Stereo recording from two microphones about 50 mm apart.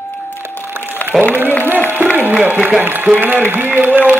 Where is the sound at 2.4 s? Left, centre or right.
Right.